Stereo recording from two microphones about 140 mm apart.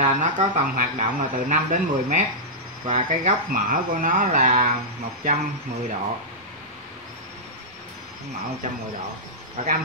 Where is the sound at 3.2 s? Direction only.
80° right; by 4.7 s 65° right (ahead or behind).